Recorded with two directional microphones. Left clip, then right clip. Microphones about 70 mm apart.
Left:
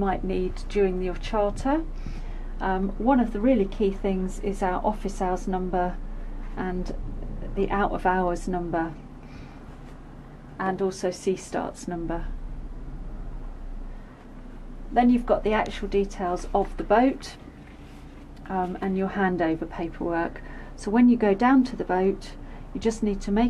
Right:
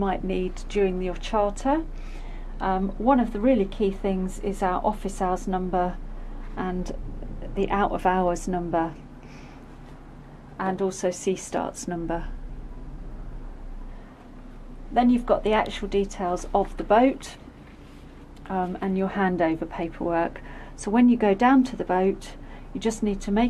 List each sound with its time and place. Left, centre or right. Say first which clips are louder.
0.0 s a woman's voice: even; right
10.8 s a woman's voice: right 1 dB; right
15.0 s a woman's voice: even; right
16.8 s a woman's voice: right 2 dB; right
18.5 s a woman's voice: even; right